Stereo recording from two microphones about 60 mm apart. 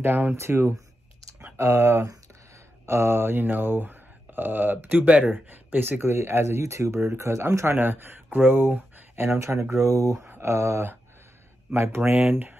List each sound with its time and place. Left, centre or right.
0.0 s speech: right
0.4 s speech: right
7.8 s speech: right
9.4 s speech: right
10.4 s speech: right
12.3 s speech: right